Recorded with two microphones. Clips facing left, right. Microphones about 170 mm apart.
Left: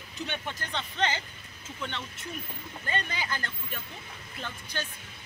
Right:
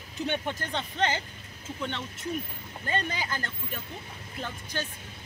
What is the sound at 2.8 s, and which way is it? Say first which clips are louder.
Speech: right 3 dB; 40° right (ahead or behind).